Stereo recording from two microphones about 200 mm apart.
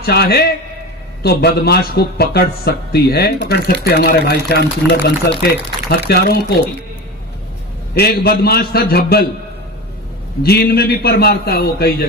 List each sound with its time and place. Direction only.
0.0 s a man's voice: 50° left (ahead or behind)
7.9 s a man's voice: 50° left (ahead or behind)
10.4 s a man's voice: 50° left (ahead or behind)